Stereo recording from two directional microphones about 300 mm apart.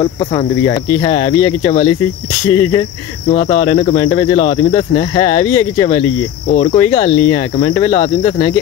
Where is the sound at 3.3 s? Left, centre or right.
Left.